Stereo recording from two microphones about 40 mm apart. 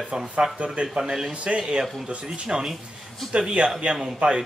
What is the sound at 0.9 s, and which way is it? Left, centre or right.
Speech, centre.